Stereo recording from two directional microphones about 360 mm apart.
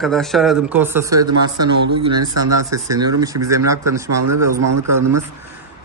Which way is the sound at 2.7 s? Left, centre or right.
Centre.